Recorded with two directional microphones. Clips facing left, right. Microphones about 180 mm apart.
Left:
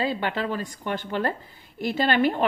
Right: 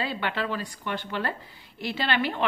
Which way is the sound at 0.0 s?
40° left (ahead or behind).